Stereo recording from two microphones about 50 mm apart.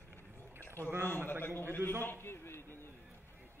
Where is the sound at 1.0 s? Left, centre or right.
Left.